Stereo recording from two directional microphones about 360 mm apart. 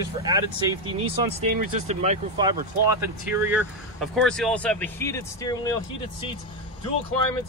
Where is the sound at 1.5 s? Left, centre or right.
Right.